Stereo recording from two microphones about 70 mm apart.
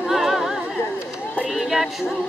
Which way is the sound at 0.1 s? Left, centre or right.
Centre.